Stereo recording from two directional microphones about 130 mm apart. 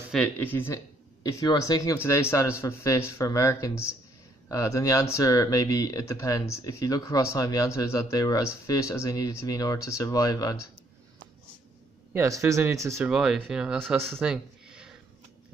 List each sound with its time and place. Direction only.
0.1 s speech: 5° left (ahead or behind)
0.5 s speech: 15° left (ahead or behind)
1.2 s speech: 30° left (ahead or behind)
12.1 s speech: 20° right (ahead or behind)
13.0 s speech: 5° right (ahead or behind)
14.2 s a sound: 5° right (ahead or behind)